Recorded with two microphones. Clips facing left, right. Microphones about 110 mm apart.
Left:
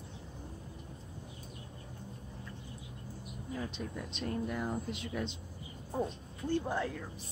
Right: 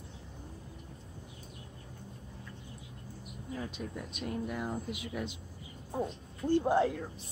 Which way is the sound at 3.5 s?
5° right (ahead or behind).